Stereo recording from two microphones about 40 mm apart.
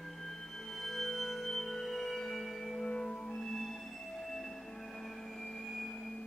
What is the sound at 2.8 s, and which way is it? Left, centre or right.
Music, centre.